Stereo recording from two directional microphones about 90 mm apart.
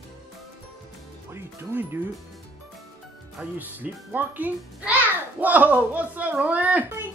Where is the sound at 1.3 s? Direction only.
25° right (ahead or behind).